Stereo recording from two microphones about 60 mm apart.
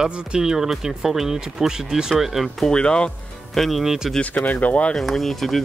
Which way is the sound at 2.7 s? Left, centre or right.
Centre.